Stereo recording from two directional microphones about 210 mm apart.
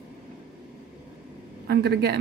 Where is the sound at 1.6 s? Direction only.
50° right (ahead or behind).